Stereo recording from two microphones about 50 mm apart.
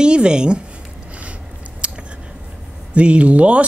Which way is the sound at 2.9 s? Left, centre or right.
Right.